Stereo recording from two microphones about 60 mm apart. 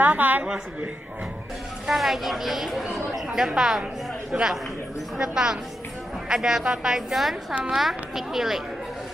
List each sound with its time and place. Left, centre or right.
0.0 s a woman's voice: right
1.9 s a woman's voice: centre